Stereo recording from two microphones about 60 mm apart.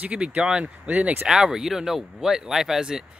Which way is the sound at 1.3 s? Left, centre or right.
Centre.